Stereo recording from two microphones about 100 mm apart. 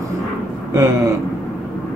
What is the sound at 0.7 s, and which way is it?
Gasp, 30° right (ahead or behind).